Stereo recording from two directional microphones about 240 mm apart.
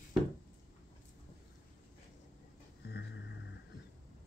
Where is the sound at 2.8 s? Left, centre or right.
Left.